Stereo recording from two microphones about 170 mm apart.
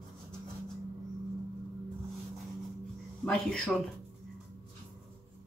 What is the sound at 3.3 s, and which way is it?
Speech, 5° left (ahead or behind).